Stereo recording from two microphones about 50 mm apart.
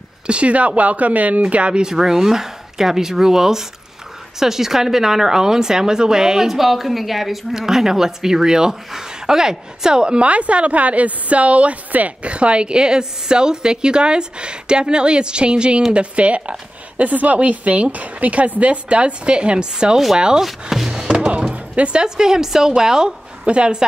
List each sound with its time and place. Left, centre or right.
0.3 s a woman's voice: right
20.7 s a sound: centre
21.1 s speech: right